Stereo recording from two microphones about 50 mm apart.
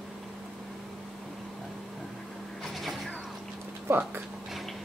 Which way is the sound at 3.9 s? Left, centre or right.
Right.